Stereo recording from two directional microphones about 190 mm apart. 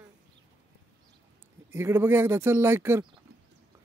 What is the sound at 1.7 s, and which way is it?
Speech, 10° right (ahead or behind).